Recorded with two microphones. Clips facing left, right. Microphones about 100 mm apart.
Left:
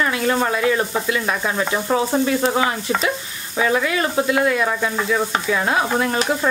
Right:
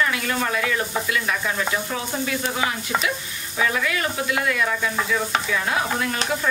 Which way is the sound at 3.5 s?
30° left (ahead or behind).